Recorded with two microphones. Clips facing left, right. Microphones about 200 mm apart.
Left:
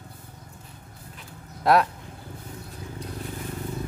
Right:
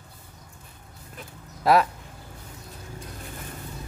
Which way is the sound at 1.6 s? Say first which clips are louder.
Even; centre (ahead or behind).